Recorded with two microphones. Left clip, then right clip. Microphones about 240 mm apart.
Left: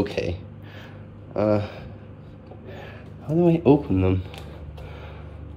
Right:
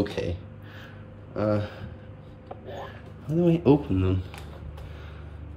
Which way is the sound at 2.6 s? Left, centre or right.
Centre.